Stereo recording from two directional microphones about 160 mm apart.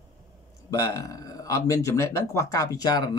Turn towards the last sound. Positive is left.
turn(degrees=25)  # may be behind; listen again after turning